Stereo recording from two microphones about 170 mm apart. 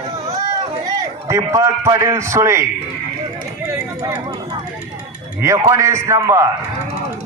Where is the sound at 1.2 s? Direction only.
15° right (ahead or behind).